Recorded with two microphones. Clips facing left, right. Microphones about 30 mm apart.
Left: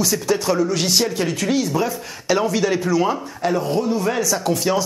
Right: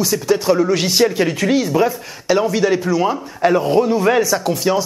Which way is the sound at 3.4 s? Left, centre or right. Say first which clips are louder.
Right 6 dB; right.